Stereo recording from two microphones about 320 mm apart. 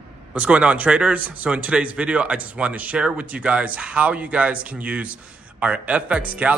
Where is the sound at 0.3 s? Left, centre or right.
Centre.